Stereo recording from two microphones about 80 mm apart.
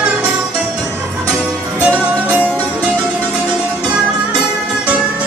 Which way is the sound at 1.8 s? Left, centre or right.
Centre.